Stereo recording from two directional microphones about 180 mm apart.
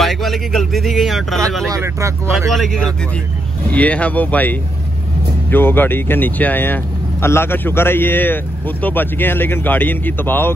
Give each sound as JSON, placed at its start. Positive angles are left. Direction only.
{"t": 0.0, "sound": "speech", "side_deg": 0}
{"t": 1.7, "sound": "speech", "side_deg": -15}
{"t": 2.5, "sound": "speech", "side_deg": 0}